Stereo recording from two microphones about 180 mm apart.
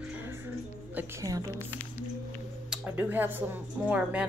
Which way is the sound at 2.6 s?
10° right (ahead or behind).